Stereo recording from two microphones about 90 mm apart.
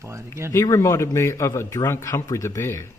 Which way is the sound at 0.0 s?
30° right (ahead or behind).